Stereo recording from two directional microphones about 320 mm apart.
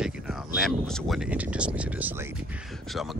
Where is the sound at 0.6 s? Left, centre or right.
Centre.